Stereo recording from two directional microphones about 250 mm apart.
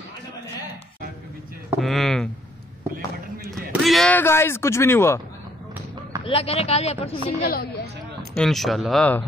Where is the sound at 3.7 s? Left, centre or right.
Centre.